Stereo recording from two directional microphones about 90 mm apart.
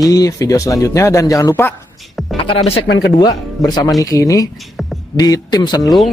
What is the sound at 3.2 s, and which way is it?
A man's voice, 50° left (ahead or behind).